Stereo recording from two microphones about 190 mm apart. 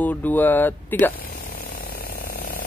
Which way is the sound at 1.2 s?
50° left (ahead or behind).